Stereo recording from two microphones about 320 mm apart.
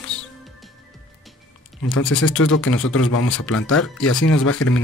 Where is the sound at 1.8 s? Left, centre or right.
Left.